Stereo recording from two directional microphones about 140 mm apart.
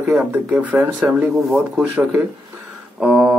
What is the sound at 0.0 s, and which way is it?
Speech, 10° right (ahead or behind).